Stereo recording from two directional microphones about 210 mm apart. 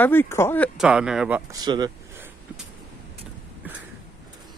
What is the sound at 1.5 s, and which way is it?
Speech, 20° right (ahead or behind).